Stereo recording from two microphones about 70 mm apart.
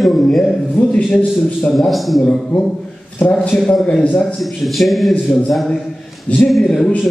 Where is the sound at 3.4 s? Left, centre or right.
Centre.